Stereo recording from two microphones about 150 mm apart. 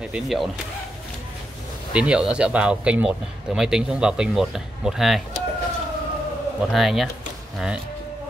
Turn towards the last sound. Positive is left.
turn(degrees=-5)  # may be behind; listen again after turning